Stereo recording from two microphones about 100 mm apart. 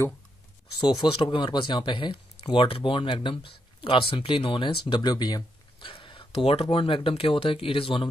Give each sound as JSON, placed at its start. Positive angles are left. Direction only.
{"t": 1.1, "sound": "speech", "side_deg": 55}
{"t": 5.8, "sound": "speech", "side_deg": 55}